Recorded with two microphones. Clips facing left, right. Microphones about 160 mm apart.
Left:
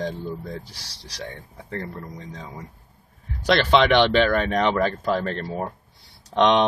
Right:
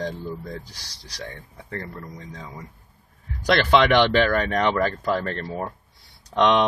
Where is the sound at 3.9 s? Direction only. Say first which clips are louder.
Left 1 dB; 20° left (ahead or behind).